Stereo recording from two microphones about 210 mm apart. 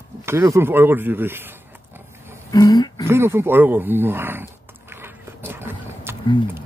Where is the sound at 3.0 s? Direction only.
10° right (ahead or behind).